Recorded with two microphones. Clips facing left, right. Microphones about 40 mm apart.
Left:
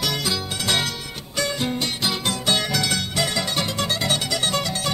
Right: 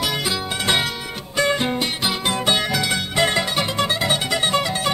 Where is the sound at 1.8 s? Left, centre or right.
Centre.